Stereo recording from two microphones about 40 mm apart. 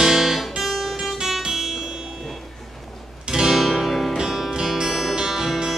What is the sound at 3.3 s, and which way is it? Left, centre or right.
Music, centre.